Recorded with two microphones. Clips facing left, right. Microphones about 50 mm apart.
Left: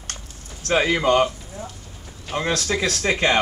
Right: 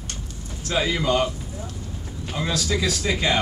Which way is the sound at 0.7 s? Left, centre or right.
Left.